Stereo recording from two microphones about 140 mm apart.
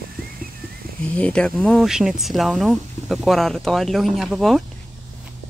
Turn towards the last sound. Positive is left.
turn(degrees=0)  # may be behind; listen again after turning